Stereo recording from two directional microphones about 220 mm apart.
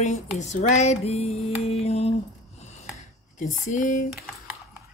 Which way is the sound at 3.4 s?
35° left (ahead or behind).